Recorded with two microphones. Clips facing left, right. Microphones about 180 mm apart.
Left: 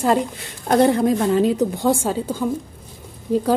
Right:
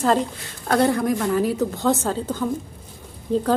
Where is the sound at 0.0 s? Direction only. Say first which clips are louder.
Left 1 dB; 10° left (ahead or behind).